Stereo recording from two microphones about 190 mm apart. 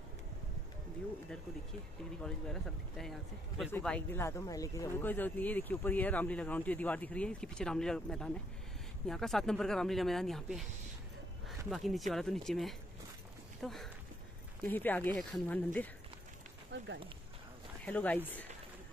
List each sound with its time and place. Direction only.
2.2 s speech: centre (ahead or behind)
16.7 s speech: 70° right (ahead or behind)
17.8 s speech: 10° left (ahead or behind)